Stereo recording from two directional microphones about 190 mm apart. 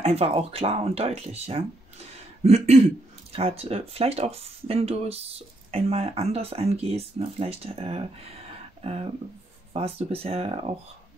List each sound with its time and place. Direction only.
0.0 s speech: 35° right (ahead or behind)